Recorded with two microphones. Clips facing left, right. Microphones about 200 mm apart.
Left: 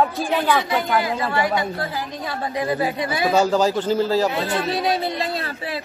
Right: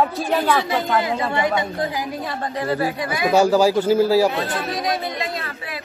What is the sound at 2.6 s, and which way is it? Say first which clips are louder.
Speech: even; 15° left (ahead or behind).